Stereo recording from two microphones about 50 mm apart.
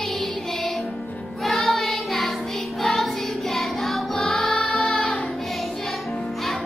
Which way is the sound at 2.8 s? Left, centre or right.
Centre.